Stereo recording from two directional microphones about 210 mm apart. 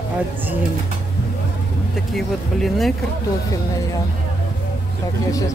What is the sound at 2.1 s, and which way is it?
Speech, centre (ahead or behind).